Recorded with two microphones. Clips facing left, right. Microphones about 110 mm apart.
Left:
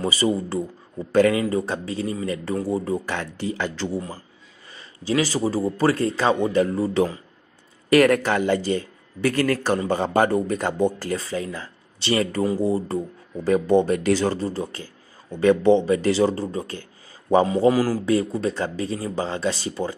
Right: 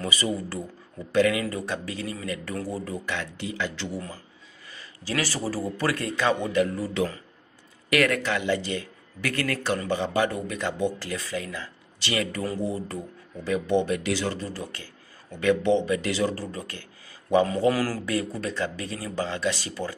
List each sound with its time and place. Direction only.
0.0 s speech: 30° left (ahead or behind)
1.1 s speech: 40° left (ahead or behind)
1.4 s speech: 25° left (ahead or behind)
3.1 s speech: 40° left (ahead or behind)
4.7 s speech: 20° left (ahead or behind)
17.6 s speech: 15° left (ahead or behind)
18.0 s speech: 25° left (ahead or behind)